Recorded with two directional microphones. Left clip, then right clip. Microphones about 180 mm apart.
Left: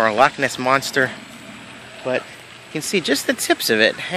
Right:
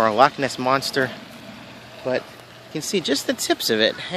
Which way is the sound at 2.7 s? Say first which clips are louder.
Left 3 dB; 15° left (ahead or behind).